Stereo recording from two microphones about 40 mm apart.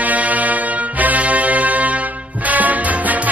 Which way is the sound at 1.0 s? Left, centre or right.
Right.